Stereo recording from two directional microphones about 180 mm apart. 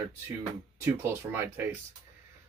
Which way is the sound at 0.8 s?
10° right (ahead or behind).